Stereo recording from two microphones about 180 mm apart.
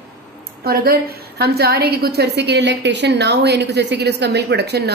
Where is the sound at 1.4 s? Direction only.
65° right (ahead or behind).